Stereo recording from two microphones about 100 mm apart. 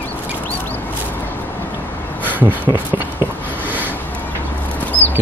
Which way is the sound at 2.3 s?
15° right (ahead or behind).